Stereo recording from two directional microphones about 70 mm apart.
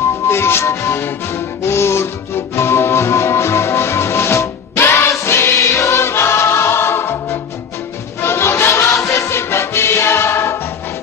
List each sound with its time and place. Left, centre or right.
0.3 s music: left
8.2 s choir: left
9.1 s music: left